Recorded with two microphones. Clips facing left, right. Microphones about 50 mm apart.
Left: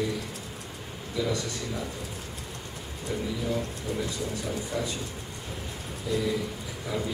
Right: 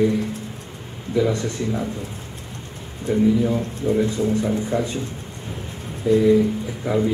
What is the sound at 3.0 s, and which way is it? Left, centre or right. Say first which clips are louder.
Speech: right 13 dB; right.